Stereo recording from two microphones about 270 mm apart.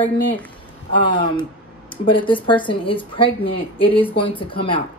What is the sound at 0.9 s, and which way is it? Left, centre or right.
Speech, centre.